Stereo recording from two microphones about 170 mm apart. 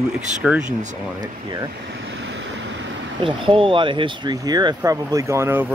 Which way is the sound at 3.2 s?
30° right (ahead or behind).